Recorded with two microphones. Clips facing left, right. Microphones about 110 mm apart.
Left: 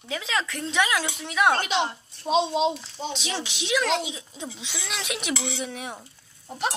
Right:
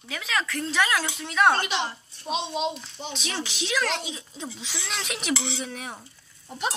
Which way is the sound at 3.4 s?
20° left (ahead or behind).